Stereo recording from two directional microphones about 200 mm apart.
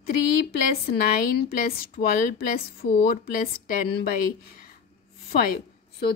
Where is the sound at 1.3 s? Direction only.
45° left (ahead or behind).